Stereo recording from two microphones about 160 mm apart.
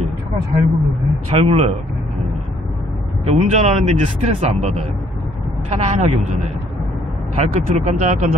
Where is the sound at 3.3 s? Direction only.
45° right (ahead or behind).